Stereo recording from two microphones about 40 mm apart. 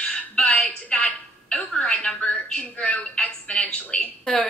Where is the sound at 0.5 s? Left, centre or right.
Left.